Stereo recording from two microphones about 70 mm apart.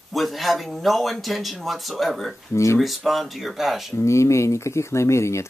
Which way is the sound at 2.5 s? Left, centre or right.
Left.